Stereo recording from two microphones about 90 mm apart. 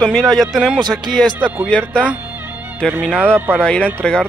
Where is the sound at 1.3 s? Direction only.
15° right (ahead or behind).